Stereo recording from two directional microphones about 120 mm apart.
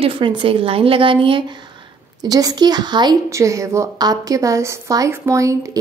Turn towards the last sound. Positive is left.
turn(degrees=-25)  # may be behind; listen again after turning